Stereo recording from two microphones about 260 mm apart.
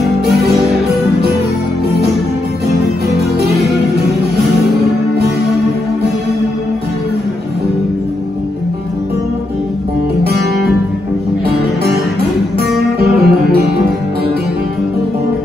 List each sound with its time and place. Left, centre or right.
11.4 s music: right